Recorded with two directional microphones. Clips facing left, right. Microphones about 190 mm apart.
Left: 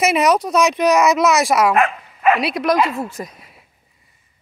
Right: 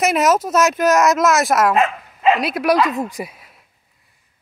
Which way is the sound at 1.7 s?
20° right (ahead or behind).